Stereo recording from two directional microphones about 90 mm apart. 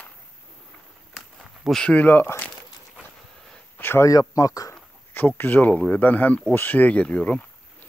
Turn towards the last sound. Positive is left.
turn(degrees=15)  # may be behind; listen again after turning